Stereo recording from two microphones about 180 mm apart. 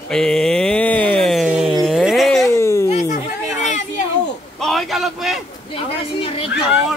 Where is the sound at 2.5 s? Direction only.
15° left (ahead or behind).